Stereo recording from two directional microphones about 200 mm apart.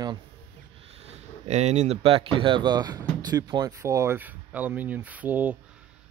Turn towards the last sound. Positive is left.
turn(degrees=-10)  # may be behind; listen again after turning